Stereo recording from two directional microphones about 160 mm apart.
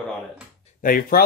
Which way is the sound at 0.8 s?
65° left (ahead or behind).